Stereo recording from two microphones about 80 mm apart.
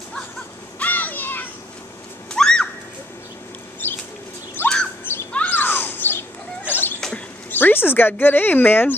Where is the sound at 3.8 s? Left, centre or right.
Left.